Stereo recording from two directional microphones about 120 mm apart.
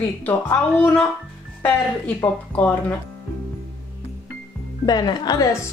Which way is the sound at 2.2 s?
10° left (ahead or behind).